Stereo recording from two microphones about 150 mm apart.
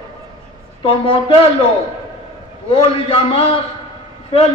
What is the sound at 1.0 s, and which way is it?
Speech, 35° left (ahead or behind).